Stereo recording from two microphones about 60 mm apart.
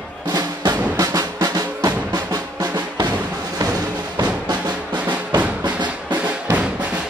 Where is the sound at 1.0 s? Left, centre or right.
Right.